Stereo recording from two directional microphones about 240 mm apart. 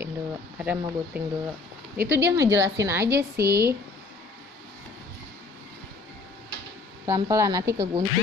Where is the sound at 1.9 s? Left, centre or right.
Centre.